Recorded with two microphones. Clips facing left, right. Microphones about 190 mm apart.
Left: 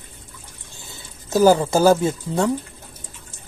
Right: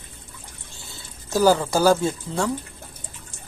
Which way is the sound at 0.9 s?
20° left (ahead or behind).